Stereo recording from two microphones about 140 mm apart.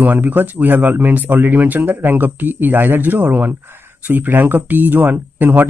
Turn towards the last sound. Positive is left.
turn(degrees=-15)  # may be behind; listen again after turning